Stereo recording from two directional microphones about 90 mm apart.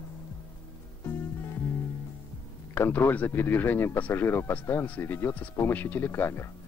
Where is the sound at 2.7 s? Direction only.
25° left (ahead or behind).